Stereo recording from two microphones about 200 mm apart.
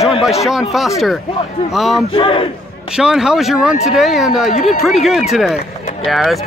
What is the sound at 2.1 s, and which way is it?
Speech, 25° left (ahead or behind).